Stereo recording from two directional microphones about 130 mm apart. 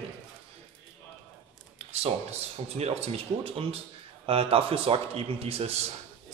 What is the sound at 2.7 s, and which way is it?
A man's voice, 55° right (ahead or behind).